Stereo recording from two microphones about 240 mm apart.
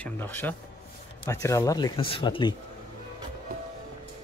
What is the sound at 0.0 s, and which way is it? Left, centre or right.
Speech, centre.